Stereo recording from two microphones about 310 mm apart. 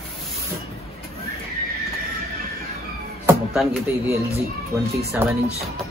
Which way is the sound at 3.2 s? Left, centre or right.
Centre.